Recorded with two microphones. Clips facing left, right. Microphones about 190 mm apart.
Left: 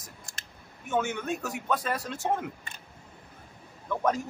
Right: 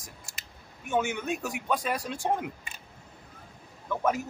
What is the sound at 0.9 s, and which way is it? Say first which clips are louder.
A man's voice: right 1 dB; 10° right (ahead or behind).